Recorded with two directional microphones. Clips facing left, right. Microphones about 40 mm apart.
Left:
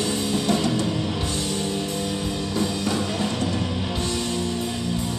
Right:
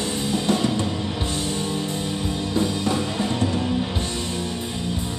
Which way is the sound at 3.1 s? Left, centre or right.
Right.